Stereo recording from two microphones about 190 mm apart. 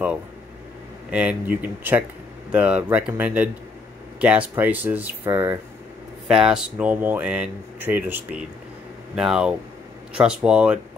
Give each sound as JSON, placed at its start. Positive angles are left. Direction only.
{"t": 1.1, "sound": "speech", "side_deg": -10}